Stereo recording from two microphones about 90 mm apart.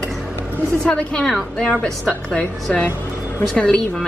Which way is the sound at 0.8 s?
10° left (ahead or behind).